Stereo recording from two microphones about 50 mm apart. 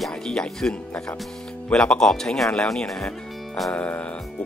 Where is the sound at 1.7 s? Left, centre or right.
Centre.